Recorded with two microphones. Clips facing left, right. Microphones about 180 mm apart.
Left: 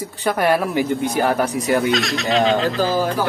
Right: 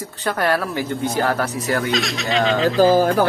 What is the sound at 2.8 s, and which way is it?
Speech, 50° right (ahead or behind).